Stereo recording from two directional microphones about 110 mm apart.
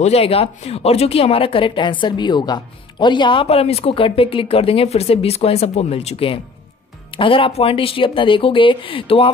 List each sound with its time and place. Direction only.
0.0 s speech: 65° left (ahead or behind); by 3.4 s 45° left (ahead or behind)
3.4 s speech: 65° left (ahead or behind)